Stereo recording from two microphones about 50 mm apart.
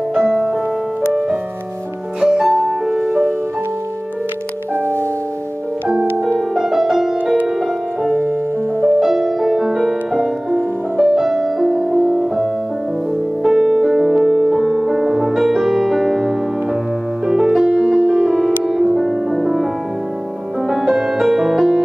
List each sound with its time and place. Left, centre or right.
0.1 s music: centre
2.1 s music: centre
6.5 s music: centre
8.8 s music: centre
20.7 s music: centre